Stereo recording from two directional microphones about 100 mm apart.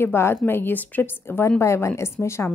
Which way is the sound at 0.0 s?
25° left (ahead or behind).